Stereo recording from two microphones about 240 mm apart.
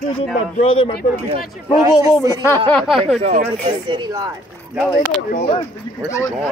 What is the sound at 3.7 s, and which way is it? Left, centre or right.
Speech, centre.